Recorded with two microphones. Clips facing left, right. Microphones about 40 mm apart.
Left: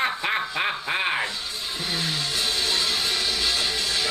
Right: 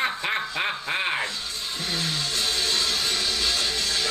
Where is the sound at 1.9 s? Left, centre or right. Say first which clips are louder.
Left 1 dB; centre.